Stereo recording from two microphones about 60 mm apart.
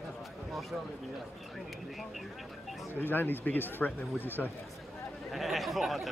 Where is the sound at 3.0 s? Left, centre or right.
Left.